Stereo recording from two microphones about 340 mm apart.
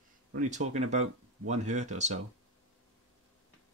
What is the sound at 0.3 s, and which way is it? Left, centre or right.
Speech, right.